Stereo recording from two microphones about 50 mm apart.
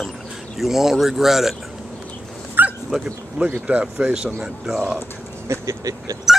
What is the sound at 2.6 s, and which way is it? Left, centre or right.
Dog, right.